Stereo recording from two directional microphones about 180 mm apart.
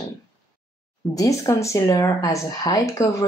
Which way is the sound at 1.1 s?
20° left (ahead or behind).